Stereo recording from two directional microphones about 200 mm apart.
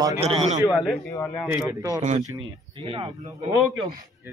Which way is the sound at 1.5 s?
15° right (ahead or behind).